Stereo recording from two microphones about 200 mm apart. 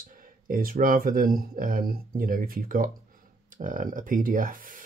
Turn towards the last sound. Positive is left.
turn(degrees=-45)  # may be behind; listen again after turning